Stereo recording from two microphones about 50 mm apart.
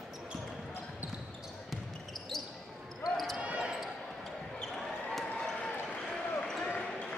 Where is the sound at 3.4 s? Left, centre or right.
Right.